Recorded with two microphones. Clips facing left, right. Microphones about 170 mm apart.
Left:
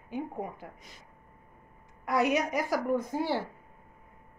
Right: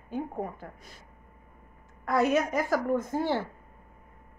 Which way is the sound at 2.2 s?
15° left (ahead or behind).